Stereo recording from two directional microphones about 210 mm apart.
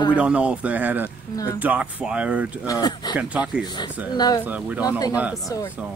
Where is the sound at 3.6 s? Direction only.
20° left (ahead or behind).